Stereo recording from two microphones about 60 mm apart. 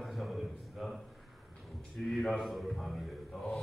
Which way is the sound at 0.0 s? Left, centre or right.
Centre.